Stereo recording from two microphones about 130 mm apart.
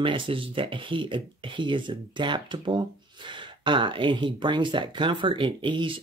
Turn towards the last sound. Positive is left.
turn(degrees=-40)  # may be behind; listen again after turning